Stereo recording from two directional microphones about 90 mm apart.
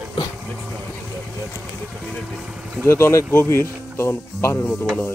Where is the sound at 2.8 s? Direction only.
30° left (ahead or behind).